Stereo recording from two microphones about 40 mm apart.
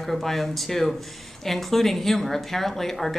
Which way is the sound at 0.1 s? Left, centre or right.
Centre.